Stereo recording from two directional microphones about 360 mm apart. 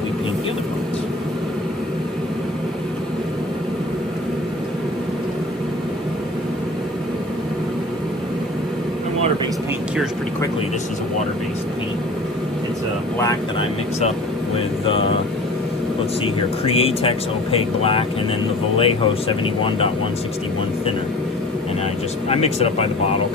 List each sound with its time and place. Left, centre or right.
16.6 s speech: centre
22.3 s speech: centre